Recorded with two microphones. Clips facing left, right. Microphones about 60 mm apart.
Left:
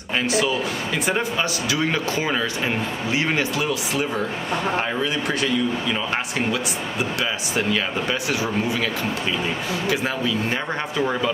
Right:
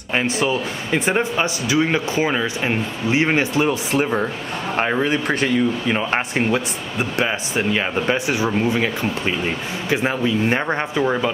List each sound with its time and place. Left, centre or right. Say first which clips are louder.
0.1 s speech: right 2 dB; right